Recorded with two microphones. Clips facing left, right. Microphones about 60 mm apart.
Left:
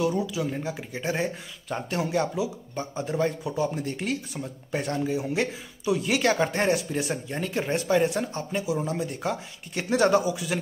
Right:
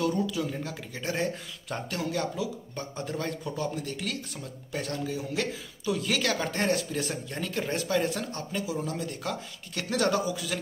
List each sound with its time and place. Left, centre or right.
0.0 s speech: centre
3.7 s speech: left